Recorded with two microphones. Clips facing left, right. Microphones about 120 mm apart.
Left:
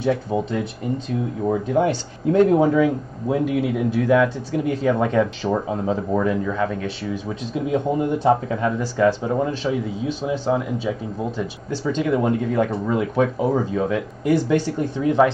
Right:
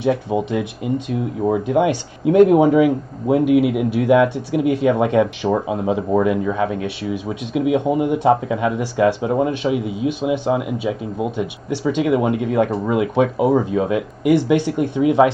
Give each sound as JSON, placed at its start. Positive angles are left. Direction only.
{"t": 0.0, "sound": "speech", "side_deg": -15}